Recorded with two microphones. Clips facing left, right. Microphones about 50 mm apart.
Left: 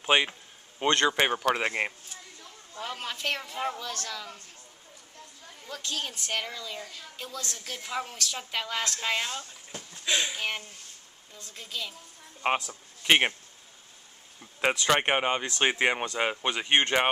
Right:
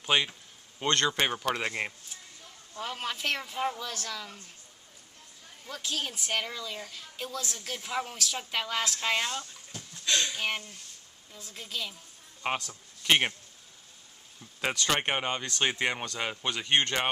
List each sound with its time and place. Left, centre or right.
0.0 s speech: centre
2.8 s a woman's voice: centre
5.7 s a woman's voice: centre
10.0 s speech: centre
11.3 s a woman's voice: centre
12.4 s a man's voice: centre
14.4 s speech: centre